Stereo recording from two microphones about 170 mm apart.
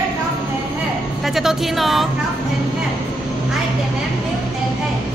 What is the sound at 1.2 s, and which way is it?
Speech, centre (ahead or behind).